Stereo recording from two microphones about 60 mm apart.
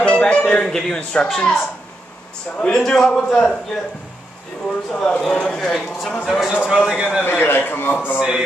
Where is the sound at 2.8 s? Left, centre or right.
Centre.